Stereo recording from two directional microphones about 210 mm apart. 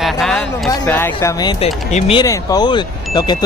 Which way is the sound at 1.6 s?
30° left (ahead or behind).